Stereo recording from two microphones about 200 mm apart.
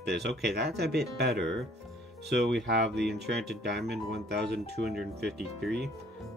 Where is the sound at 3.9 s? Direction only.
55° right (ahead or behind).